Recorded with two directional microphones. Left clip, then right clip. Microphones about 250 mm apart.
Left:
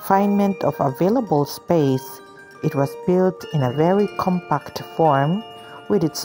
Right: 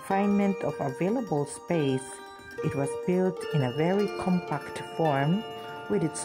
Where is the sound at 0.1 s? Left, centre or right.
Centre.